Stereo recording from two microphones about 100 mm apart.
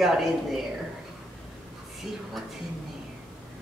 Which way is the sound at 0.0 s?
Centre (ahead or behind).